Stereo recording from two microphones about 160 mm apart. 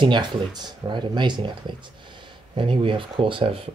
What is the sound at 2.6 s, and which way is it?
Speech, 30° right (ahead or behind).